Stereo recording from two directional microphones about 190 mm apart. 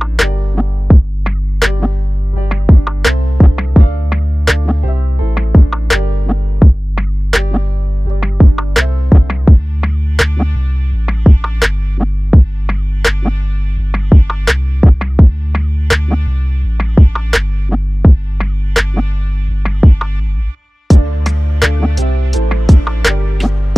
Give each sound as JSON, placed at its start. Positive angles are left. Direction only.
{"t": 0.0, "sound": "music", "side_deg": 0}